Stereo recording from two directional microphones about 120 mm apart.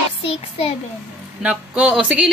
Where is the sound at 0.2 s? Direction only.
55° left (ahead or behind).